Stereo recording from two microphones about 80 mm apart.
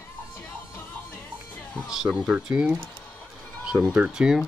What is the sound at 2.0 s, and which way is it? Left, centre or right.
Speech, centre.